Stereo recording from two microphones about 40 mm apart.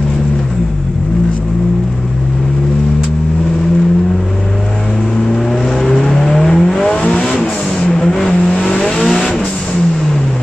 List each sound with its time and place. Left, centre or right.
5.9 s vehicle: centre
8.3 s vehicle: left
8.8 s vehicle: centre